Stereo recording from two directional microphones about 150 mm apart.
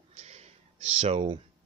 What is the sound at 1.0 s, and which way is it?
Speech, 45° right (ahead or behind).